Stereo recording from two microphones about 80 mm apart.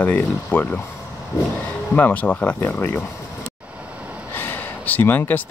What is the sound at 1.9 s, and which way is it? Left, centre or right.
Speech, left.